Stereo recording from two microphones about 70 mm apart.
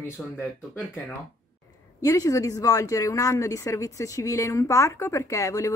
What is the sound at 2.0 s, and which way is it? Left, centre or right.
Speech, left.